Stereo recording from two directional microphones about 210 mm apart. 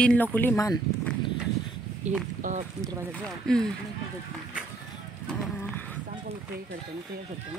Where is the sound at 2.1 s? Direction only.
35° right (ahead or behind).